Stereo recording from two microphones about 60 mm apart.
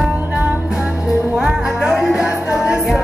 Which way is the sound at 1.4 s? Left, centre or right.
Centre.